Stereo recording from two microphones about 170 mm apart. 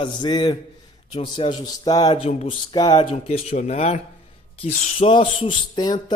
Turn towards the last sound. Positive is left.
turn(degrees=25)  # may be behind; listen again after turning